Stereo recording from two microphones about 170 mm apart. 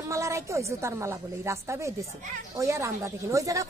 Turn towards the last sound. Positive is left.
turn(degrees=-20)  # may be behind; listen again after turning